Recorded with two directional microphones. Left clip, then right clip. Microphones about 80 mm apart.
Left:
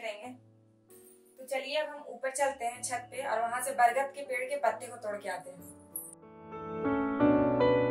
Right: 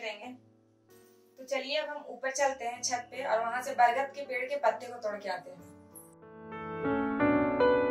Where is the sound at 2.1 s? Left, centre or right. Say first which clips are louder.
Right 1 dB; centre.